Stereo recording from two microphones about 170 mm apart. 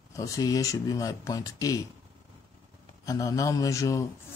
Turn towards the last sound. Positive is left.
turn(degrees=20)  # may be behind; listen again after turning